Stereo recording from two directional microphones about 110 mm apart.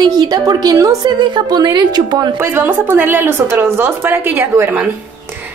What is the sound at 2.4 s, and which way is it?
A woman's voice, 20° right (ahead or behind).